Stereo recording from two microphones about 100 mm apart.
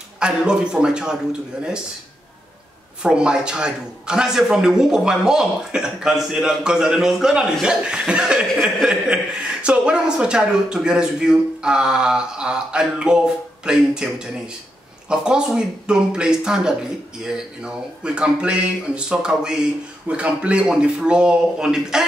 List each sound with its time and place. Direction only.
0.2 s a man's voice: 10° right (ahead or behind)
3.0 s a man's voice: 10° right (ahead or behind)